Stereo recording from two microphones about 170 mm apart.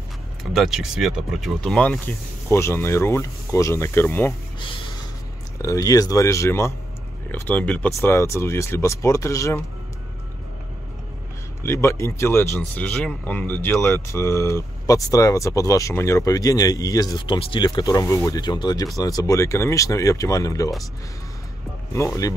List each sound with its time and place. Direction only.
0.6 s speech: centre (ahead or behind)
4.6 s a sound: 30° left (ahead or behind)
5.6 s speech: 20° left (ahead or behind)
11.6 s speech: 15° left (ahead or behind)
21.9 s speech: 15° left (ahead or behind)